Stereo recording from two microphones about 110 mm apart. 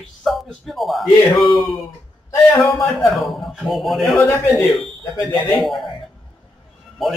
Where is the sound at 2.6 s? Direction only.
Centre (ahead or behind).